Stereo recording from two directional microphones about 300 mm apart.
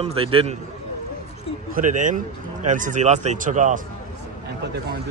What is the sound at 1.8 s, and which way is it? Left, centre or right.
Speech, right.